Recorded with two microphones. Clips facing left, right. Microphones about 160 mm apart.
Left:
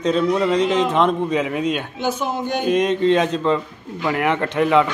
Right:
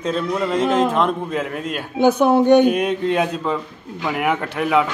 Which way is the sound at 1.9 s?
60° right (ahead or behind).